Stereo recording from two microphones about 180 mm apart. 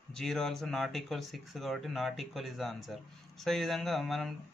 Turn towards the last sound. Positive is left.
turn(degrees=0)  # may be behind; listen again after turning